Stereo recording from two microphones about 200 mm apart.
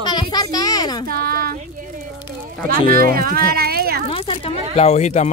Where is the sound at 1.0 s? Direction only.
45° right (ahead or behind).